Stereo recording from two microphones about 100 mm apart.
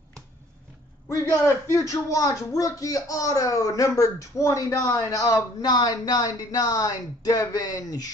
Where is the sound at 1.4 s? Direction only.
30° left (ahead or behind).